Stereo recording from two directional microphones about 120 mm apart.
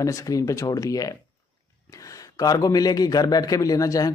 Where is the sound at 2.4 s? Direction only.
30° left (ahead or behind).